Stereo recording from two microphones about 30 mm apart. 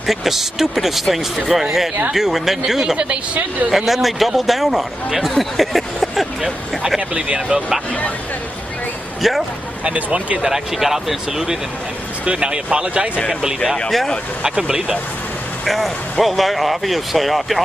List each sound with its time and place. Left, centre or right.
0.0 s speech: centre
5.4 s a sound: centre
7.0 s speech: right
7.3 s speech: right
9.2 s speech: centre
9.9 s speech: right
10.8 s speech: centre
12.3 s speech: right
13.3 s speech: right
13.8 s speech: centre
14.5 s speech: right
15.6 s speech: centre